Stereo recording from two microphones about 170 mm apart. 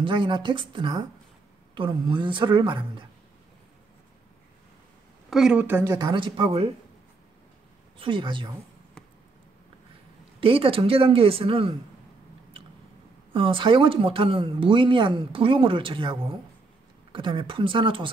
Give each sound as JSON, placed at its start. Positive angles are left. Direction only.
{"t": 0.0, "sound": "a woman's voice", "side_deg": -30}
{"t": 5.3, "sound": "speech", "side_deg": -5}
{"t": 5.9, "sound": "speech", "side_deg": -25}
{"t": 8.0, "sound": "a woman's voice", "side_deg": -30}
{"t": 10.4, "sound": "speech", "side_deg": -35}
{"t": 13.3, "sound": "a woman's voice", "side_deg": -30}